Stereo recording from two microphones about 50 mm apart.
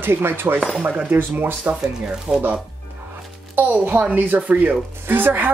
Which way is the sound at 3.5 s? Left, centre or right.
Right.